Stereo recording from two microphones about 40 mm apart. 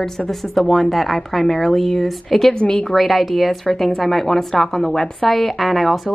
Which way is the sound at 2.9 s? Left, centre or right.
Centre.